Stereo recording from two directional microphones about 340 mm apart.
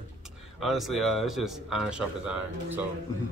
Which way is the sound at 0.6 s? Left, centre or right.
Centre.